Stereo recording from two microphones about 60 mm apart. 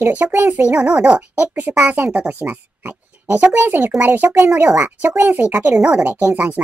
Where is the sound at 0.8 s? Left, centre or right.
Centre.